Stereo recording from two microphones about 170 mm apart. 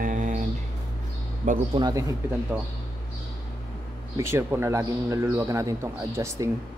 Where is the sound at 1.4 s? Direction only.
45° right (ahead or behind).